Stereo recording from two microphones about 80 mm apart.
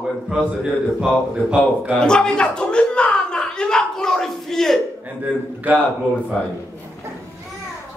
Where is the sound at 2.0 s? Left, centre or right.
Centre.